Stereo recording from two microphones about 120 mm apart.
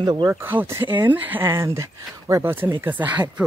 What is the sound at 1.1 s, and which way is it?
Speech, 15° right (ahead or behind).